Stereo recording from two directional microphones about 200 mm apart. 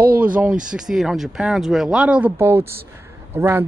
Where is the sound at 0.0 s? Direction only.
50° right (ahead or behind).